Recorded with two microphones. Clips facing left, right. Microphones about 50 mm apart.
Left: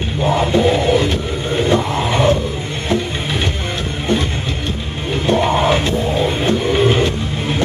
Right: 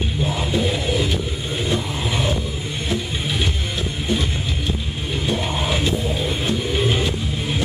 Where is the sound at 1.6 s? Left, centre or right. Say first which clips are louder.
Left 8 dB; left.